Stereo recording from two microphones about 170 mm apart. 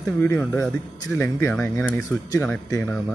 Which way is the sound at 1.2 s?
15° left (ahead or behind).